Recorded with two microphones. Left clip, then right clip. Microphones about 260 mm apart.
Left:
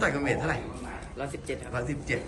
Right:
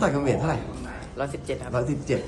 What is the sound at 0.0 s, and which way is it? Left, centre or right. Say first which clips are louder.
A man's voice: right 3 dB; centre.